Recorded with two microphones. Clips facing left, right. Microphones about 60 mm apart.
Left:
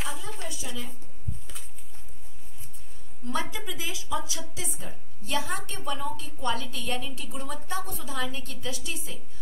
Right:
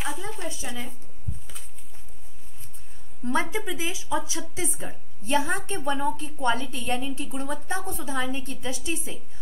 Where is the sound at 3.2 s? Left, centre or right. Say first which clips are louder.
Right 5 dB; right.